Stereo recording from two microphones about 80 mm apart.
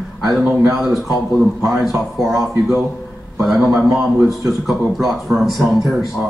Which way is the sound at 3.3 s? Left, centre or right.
Centre.